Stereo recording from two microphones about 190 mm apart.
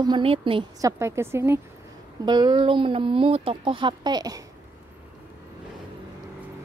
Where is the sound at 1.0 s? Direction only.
15° right (ahead or behind).